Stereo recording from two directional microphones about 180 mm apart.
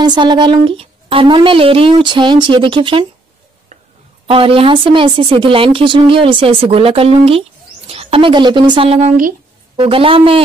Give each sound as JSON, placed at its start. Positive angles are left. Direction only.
{"t": 0.0, "sound": "speech", "side_deg": -25}
{"t": 4.3, "sound": "a woman's voice", "side_deg": -30}